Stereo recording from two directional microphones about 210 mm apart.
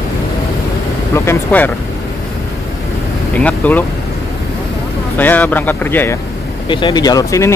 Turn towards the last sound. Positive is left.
turn(degrees=15)  # may be behind; listen again after turning